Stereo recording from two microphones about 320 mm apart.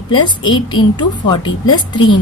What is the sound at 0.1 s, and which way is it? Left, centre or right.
A woman's voice, centre.